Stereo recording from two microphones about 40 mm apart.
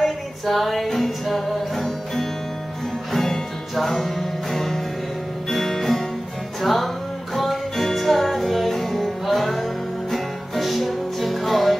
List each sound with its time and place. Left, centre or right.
0.0 s music: centre